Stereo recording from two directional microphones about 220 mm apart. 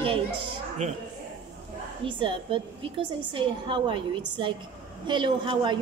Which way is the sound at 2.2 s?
25° right (ahead or behind).